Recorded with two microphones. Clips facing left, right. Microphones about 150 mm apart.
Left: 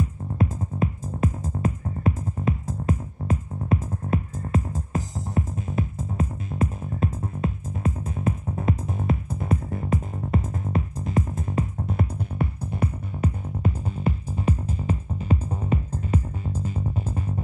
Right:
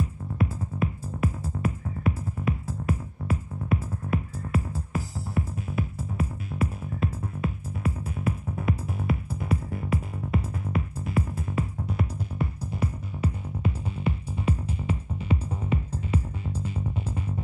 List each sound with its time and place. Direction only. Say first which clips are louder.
0.4 s music: left 3 dB; 40° left (ahead or behind)